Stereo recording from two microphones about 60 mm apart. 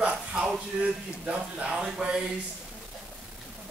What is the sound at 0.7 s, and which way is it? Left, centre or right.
Speech, centre.